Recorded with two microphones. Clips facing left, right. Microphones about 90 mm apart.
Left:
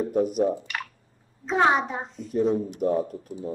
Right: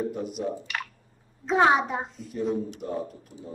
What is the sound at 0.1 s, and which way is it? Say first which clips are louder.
Speech: left 9 dB; 45° left (ahead or behind).